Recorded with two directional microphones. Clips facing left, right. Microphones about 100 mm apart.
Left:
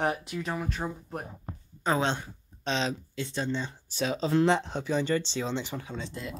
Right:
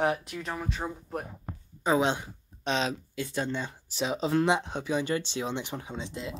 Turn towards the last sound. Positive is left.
turn(degrees=-20)  # may be behind; listen again after turning